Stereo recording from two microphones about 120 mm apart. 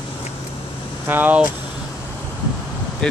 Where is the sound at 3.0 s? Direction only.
5° left (ahead or behind).